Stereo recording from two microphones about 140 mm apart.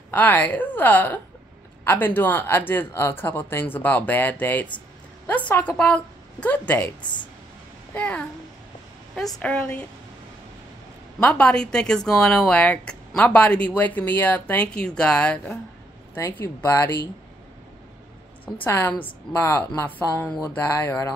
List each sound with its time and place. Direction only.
0.1 s speech: 10° left (ahead or behind)
7.0 s speech: 35° left (ahead or behind)
7.9 s speech: 10° left (ahead or behind)
11.1 s speech: 10° left (ahead or behind)
16.2 s speech: 20° left (ahead or behind)
18.4 s speech: 10° left (ahead or behind)